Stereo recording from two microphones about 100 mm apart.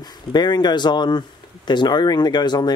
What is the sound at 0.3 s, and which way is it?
Speech, 45° left (ahead or behind).